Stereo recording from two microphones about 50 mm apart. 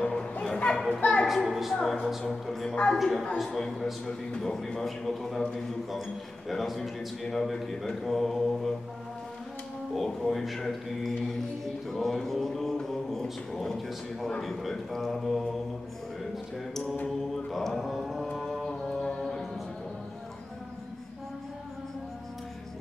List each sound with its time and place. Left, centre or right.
0.0 s children playing: left
1.2 s a woman's voice: centre
2.0 s mantra: centre
6.5 s mantra: centre
9.9 s mantra: centre
17.5 s mantra: centre
17.9 s music: centre